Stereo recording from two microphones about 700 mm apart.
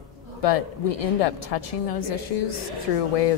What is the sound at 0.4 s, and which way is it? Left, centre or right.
Speech, left.